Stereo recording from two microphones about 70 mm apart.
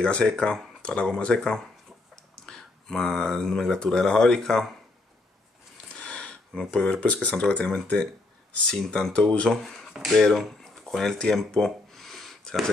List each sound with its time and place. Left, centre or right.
0.0 s speech: centre
5.9 s a sound: centre
6.7 s speech: centre
9.6 s speech: centre